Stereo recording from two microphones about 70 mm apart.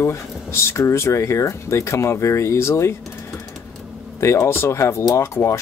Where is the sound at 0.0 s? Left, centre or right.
Left.